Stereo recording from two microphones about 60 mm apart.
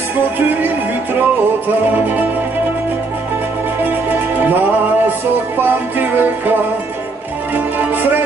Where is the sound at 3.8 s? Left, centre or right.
Right.